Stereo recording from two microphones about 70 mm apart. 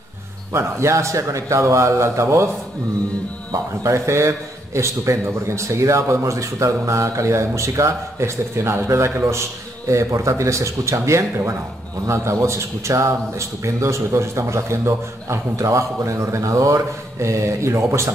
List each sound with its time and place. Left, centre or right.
0.5 s a man's voice: right
3.8 s a man's voice: right